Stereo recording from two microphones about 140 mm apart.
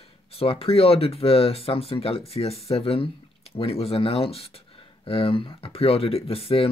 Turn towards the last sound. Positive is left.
turn(degrees=45)  # may be behind; listen again after turning